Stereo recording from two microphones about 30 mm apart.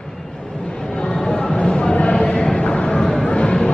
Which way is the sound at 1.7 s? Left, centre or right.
Left.